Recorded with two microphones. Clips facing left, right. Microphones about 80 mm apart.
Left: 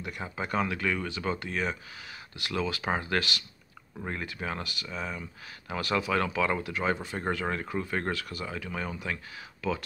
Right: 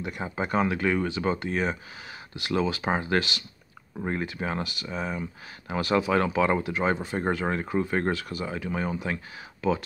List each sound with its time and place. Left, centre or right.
0.0 s speech: centre